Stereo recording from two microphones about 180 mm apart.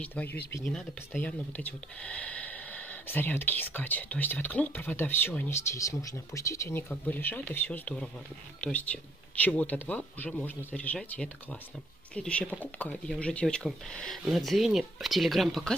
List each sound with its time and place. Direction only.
0.0 s speech: 10° left (ahead or behind)